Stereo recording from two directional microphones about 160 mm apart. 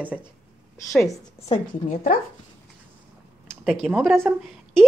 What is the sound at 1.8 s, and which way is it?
Speech, 55° left (ahead or behind).